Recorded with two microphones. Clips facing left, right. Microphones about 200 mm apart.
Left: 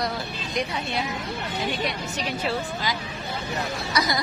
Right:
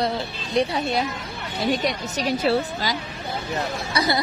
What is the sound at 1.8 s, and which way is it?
Speech, 40° right (ahead or behind).